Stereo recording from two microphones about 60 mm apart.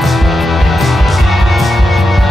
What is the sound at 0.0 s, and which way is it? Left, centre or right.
Music, centre.